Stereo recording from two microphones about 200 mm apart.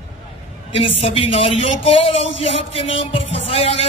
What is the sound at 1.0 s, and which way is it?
Speech, 30° left (ahead or behind).